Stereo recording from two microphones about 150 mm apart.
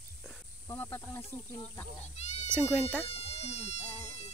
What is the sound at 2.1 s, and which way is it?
Speech, 45° left (ahead or behind).